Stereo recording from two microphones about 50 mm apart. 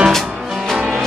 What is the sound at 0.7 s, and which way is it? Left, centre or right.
Music, centre.